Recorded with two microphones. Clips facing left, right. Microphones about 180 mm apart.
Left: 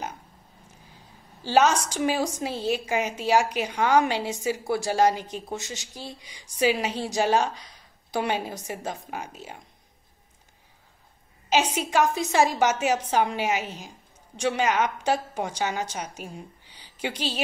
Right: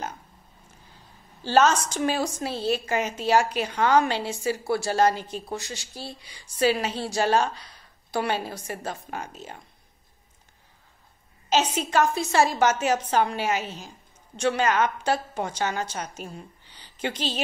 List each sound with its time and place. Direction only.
1.4 s a woman's voice: 15° left (ahead or behind)
11.4 s a woman's voice: 10° left (ahead or behind)